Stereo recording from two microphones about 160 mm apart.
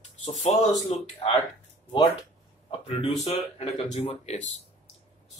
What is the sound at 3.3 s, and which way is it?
Speech, 40° left (ahead or behind).